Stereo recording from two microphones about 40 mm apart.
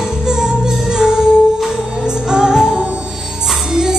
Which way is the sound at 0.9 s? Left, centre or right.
Centre.